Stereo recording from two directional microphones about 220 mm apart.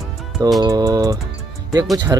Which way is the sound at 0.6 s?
15° right (ahead or behind).